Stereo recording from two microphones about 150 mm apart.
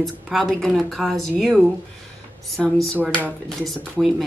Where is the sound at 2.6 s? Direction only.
5° left (ahead or behind).